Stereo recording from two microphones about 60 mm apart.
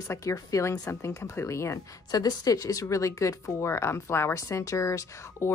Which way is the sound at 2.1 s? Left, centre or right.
Left.